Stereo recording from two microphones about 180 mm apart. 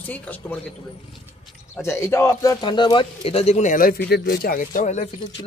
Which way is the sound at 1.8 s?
15° left (ahead or behind).